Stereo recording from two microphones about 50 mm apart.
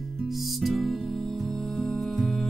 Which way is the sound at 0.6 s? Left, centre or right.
Centre.